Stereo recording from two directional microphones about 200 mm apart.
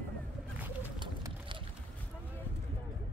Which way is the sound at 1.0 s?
25° right (ahead or behind).